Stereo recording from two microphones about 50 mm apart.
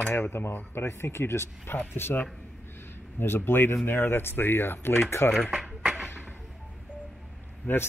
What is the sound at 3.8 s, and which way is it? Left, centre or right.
Speech, left.